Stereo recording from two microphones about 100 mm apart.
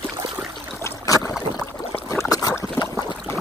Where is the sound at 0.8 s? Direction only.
30° left (ahead or behind).